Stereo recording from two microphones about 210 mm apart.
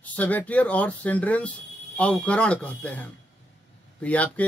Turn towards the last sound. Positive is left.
turn(degrees=5)  # may be behind; listen again after turning